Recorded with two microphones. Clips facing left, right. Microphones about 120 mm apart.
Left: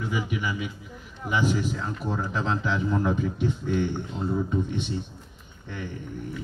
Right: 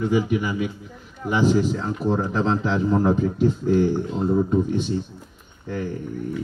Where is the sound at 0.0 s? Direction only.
40° right (ahead or behind).